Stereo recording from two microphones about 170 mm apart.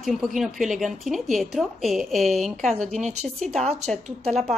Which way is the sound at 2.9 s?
40° right (ahead or behind).